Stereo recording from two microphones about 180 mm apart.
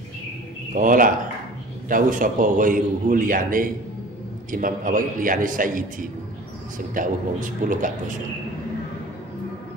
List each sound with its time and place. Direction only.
0.7 s a man's voice: 50° right (ahead or behind)